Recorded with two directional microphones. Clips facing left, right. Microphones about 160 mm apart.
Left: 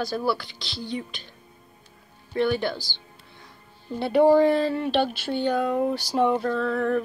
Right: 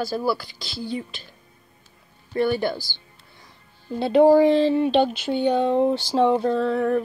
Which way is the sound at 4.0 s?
15° right (ahead or behind).